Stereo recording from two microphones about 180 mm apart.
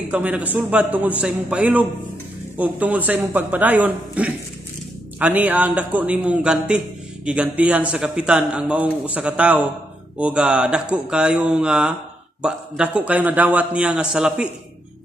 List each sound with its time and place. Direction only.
0.1 s a man's voice: 10° right (ahead or behind)